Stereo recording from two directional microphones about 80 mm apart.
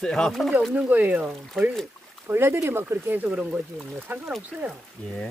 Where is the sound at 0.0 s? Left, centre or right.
Centre.